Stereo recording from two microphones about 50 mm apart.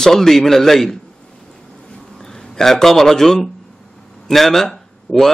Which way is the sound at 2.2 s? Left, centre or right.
Centre.